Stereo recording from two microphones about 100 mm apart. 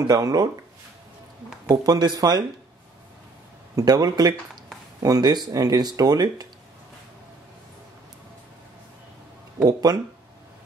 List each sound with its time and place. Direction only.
0.0 s speech: 40° right (ahead or behind)
1.7 s speech: 40° right (ahead or behind)
3.7 s speech: 40° right (ahead or behind)
9.6 s speech: 40° right (ahead or behind)